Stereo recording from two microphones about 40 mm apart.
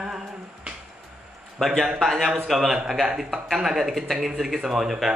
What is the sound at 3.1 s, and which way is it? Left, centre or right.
Speech, centre.